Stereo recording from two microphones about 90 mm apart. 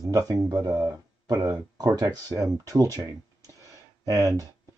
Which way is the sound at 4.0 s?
35° right (ahead or behind).